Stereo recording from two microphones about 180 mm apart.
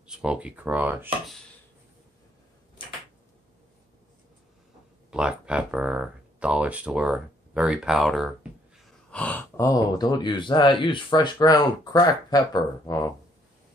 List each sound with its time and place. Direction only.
0.0 s speech: 5° right (ahead or behind)
5.1 s speech: 5° right (ahead or behind); by 13.1 s 15° left (ahead or behind)